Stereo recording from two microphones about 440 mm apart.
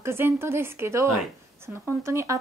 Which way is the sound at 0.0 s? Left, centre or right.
Centre.